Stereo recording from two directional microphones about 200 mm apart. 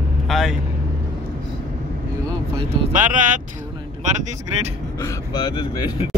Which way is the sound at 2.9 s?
40° right (ahead or behind).